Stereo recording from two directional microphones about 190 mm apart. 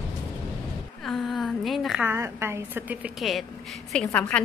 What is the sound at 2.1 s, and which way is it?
A woman's voice, 10° right (ahead or behind).